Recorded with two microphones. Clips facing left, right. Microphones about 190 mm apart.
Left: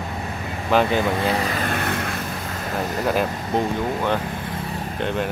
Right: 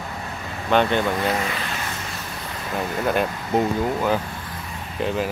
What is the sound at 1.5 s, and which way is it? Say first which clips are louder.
Vehicle: left 6 dB; 50° left (ahead or behind).